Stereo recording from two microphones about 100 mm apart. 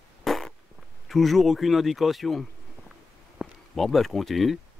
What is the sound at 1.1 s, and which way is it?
Speech, centre (ahead or behind).